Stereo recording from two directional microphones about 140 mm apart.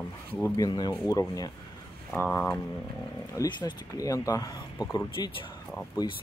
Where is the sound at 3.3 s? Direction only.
30° left (ahead or behind).